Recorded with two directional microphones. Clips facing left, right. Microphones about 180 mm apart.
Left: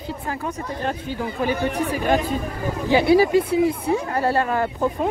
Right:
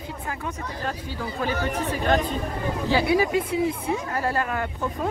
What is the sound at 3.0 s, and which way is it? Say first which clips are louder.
Speech: left 9 dB; 35° left (ahead or behind).